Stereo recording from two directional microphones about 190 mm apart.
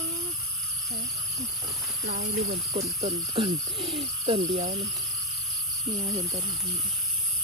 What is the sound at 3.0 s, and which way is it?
Speech, 30° right (ahead or behind).